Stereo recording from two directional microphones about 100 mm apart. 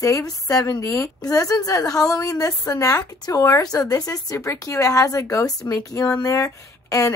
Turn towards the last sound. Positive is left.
turn(degrees=30)  # may be behind; listen again after turning